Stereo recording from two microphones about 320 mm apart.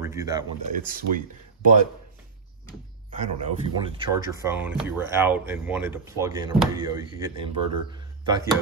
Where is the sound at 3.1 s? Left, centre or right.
Centre.